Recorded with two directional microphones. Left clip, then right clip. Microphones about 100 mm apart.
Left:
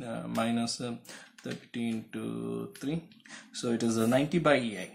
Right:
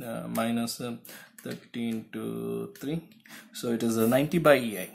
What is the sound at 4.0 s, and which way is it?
Speech, 35° right (ahead or behind).